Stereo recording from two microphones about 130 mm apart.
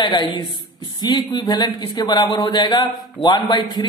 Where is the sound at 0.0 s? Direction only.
35° left (ahead or behind).